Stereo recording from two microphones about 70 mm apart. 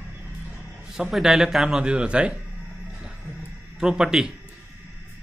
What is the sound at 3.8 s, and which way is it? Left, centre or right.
Speech, centre.